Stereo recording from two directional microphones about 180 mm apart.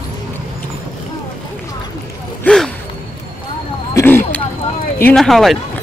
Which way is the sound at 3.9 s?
10° left (ahead or behind).